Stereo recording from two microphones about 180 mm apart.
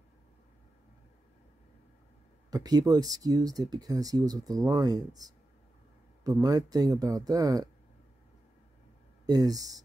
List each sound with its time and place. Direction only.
2.5 s speech: 20° right (ahead or behind)
9.2 s speech: 20° right (ahead or behind)